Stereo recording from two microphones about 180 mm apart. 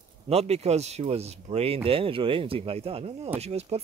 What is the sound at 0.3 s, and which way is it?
Speech, 35° right (ahead or behind).